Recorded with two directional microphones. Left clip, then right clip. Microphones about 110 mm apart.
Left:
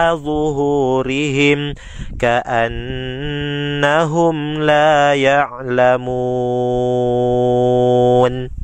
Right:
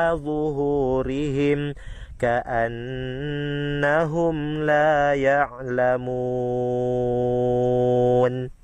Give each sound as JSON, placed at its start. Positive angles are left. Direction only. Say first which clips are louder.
{"t": 0.0, "sound": "mantra", "louder": "left 7 dB", "side_deg": 25}
{"t": 3.8, "sound": "mantra", "louder": "left 7 dB", "side_deg": 30}
{"t": 4.3, "sound": "mantra", "louder": "left 7 dB", "side_deg": 20}